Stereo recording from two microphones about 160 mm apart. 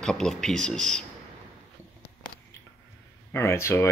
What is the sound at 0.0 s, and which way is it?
Speech, 5° left (ahead or behind).